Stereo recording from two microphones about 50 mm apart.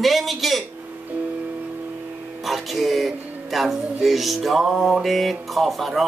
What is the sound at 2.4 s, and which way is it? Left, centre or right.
Speech, centre.